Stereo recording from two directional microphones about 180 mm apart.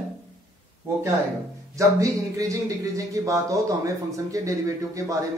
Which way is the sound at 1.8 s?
20° right (ahead or behind).